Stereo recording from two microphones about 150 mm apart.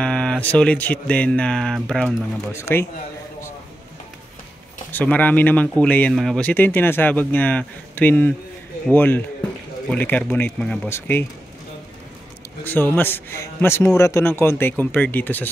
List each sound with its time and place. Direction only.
0.0 s speech: 5° left (ahead or behind)
2.5 s speech: 15° left (ahead or behind)
4.9 s speech: 10° left (ahead or behind)
12.6 s speech: 15° left (ahead or behind)